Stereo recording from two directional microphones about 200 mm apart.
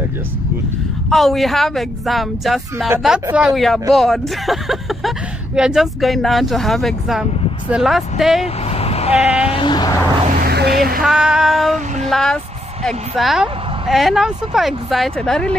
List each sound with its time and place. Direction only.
1.1 s speech: centre (ahead or behind)
8.6 s vehicle: 30° left (ahead or behind)
10.4 s speech: 55° right (ahead or behind)
11.1 s speech: 5° right (ahead or behind)